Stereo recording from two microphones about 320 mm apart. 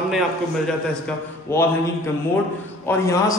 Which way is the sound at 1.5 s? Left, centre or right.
Centre.